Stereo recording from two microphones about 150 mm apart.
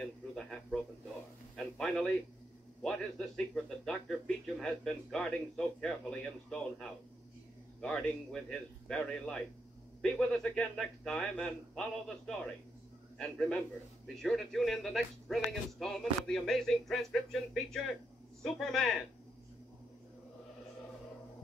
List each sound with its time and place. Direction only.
0.0 s a sound: 5° left (ahead or behind)
2.8 s speech: 5° left (ahead or behind)
13.2 s a man's voice: 5° left (ahead or behind)